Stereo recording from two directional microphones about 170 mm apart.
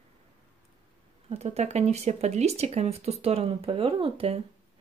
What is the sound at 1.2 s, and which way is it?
Speech, 40° right (ahead or behind).